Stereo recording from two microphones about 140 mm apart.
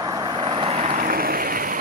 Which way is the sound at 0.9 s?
90° right.